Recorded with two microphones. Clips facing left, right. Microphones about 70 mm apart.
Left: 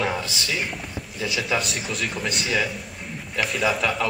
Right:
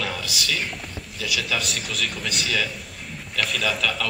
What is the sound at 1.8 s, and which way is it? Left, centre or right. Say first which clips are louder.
Speech: left 1 dB; centre.